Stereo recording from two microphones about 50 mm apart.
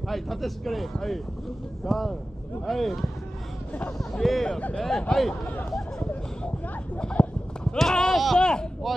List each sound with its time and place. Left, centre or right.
0.1 s speech: centre
7.2 s clip-clop: left
7.7 s speech: centre
8.4 s speech: centre
8.8 s speech: centre